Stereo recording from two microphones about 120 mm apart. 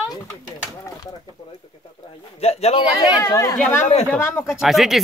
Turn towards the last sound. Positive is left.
turn(degrees=0)  # may be behind; listen again after turning